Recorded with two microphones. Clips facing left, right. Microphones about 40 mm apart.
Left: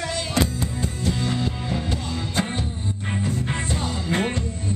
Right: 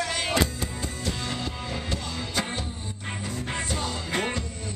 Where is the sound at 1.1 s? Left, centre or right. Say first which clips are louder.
Left 7 dB; centre.